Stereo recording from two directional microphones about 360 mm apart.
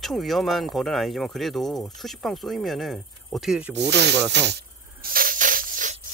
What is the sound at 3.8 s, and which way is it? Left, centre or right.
Snake, right.